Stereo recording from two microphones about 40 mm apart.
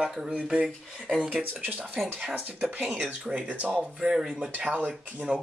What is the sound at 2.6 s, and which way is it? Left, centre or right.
Speech, right.